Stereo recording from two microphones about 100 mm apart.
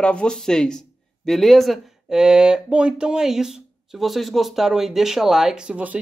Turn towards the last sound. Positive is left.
turn(degrees=-10)  # may be behind; listen again after turning